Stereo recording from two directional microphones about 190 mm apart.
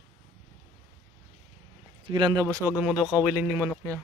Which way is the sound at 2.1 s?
25° right (ahead or behind).